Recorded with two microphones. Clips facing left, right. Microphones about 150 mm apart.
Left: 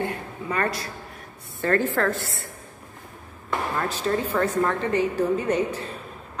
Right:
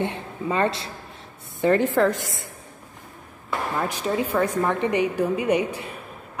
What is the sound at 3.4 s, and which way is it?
Speech, 15° right (ahead or behind).